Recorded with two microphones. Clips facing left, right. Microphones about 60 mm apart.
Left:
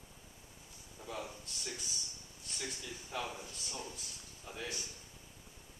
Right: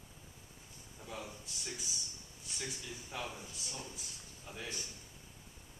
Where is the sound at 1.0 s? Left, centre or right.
Centre.